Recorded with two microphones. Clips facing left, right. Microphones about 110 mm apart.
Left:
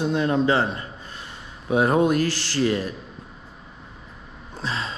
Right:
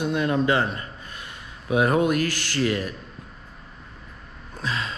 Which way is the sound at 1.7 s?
35° left (ahead or behind).